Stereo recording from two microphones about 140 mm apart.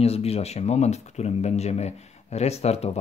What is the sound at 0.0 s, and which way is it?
Speech, 45° left (ahead or behind).